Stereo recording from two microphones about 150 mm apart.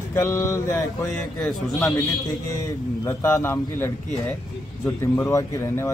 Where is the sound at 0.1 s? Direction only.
20° left (ahead or behind).